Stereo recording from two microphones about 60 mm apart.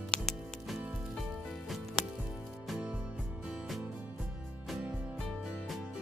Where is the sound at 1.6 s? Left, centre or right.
Centre.